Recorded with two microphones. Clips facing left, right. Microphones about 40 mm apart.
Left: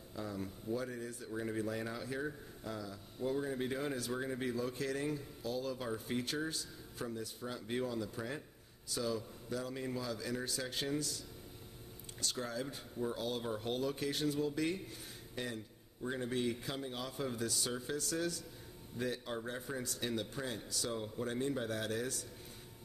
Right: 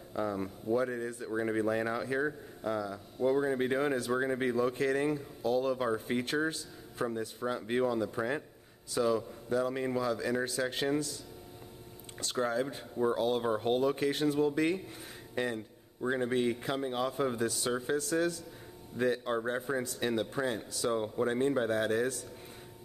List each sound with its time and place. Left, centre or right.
0.1 s a man's voice: right
12.4 s a man's voice: right
15.3 s a sound: right
16.1 s a man's voice: right